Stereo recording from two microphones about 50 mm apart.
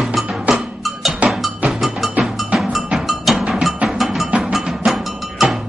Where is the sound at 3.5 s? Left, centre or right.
Centre.